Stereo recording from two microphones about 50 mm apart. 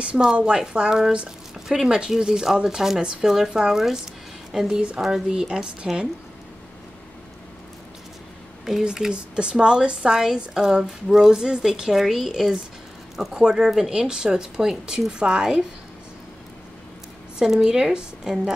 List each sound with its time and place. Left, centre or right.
0.6 s speech: centre
8.8 s speech: centre
17.4 s speech: centre